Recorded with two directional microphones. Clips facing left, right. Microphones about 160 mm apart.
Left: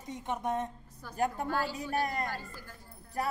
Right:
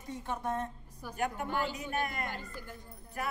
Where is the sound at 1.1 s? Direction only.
35° left (ahead or behind).